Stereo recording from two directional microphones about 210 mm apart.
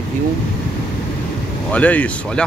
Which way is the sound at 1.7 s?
5° left (ahead or behind).